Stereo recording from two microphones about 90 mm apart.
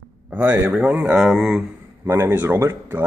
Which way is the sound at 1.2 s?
5° right (ahead or behind).